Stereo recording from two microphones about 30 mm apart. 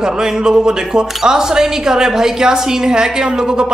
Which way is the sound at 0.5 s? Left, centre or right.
Right.